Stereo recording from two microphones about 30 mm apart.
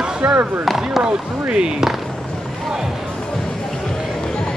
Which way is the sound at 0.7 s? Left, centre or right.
Centre.